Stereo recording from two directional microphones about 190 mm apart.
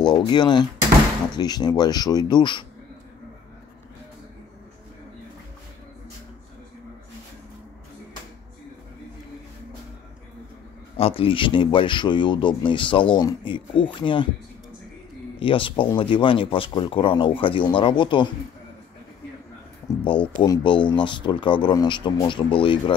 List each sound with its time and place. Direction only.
0.0 s speech: 25° left (ahead or behind)
11.0 s speech: 30° left (ahead or behind)
15.3 s speech: 30° left (ahead or behind)
19.9 s speech: 20° left (ahead or behind)